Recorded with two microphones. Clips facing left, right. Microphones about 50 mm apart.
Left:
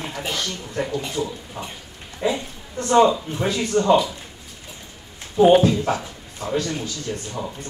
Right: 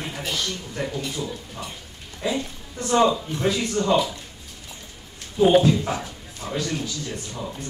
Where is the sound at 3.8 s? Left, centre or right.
Left.